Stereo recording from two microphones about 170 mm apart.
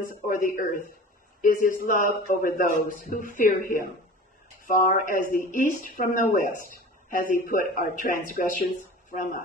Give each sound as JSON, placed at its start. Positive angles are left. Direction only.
{"t": 0.1, "sound": "a man's voice", "side_deg": 55}
{"t": 4.6, "sound": "a man's voice", "side_deg": 55}
{"t": 6.7, "sound": "a sound", "side_deg": 55}
{"t": 7.4, "sound": "a man's voice", "side_deg": 55}